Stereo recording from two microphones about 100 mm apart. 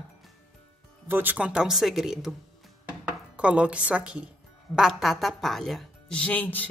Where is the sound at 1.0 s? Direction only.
20° right (ahead or behind); by 2.3 s 5° right (ahead or behind).